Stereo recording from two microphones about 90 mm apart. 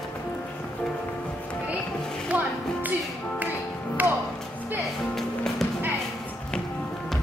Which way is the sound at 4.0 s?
20° right (ahead or behind).